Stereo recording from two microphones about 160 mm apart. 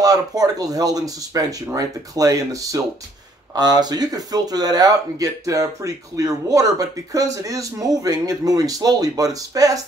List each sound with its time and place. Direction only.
0.0 s speech: 25° right (ahead or behind)